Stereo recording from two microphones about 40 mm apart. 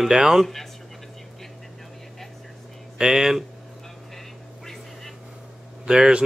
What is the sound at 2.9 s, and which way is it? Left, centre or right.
Speech, centre.